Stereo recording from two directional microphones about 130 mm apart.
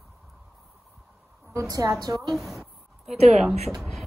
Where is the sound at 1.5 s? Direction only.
25° right (ahead or behind).